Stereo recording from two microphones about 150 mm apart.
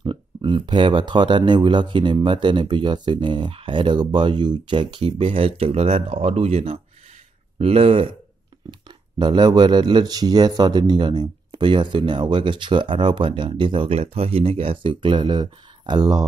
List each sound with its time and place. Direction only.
0.0 s speech: 35° right (ahead or behind)